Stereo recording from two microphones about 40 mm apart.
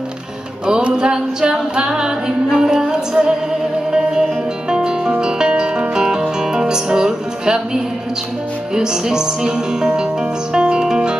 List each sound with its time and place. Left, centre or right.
0.9 s music: centre
8.7 s speech: centre
10.5 s music: right